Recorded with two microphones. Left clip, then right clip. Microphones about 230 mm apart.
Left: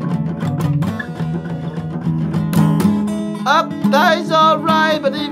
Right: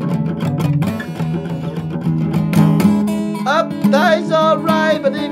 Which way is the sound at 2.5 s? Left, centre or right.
Right.